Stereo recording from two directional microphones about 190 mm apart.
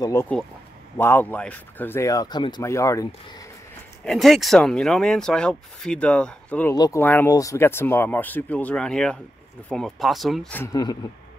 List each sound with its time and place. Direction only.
0.0 s speech: 15° left (ahead or behind)
4.0 s speech: centre (ahead or behind)
6.7 s speech: 15° left (ahead or behind)